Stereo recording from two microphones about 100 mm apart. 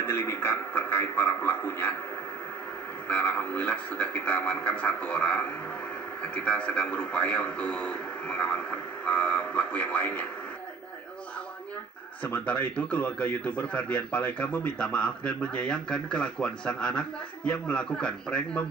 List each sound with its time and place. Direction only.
0.0 s a man's voice: 25° left (ahead or behind)
3.1 s a man's voice: 15° left (ahead or behind)
12.2 s a man's voice: 15° left (ahead or behind)